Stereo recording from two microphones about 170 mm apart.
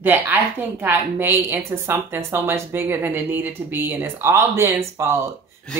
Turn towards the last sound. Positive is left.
turn(degrees=-15)  # may be behind; listen again after turning